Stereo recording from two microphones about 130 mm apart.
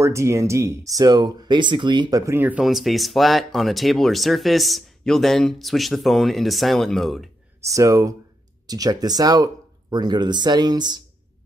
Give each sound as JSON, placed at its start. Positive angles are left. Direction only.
{"t": 0.0, "sound": "speech", "side_deg": -20}
{"t": 2.3, "sound": "speech", "side_deg": -15}
{"t": 2.6, "sound": "speech", "side_deg": 0}
{"t": 7.6, "sound": "speech", "side_deg": -25}